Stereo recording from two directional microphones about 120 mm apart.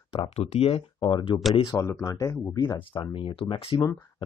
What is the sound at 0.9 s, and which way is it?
Speech, 40° left (ahead or behind).